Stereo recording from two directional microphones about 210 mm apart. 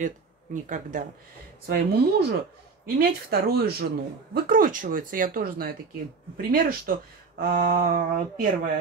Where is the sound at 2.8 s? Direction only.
45° right (ahead or behind).